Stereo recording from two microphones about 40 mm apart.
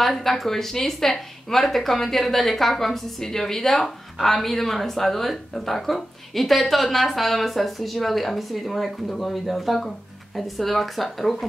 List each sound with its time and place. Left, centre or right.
0.0 s speech: centre